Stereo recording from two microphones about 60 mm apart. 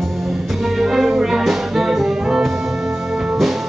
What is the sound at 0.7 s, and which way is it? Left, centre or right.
Music, centre.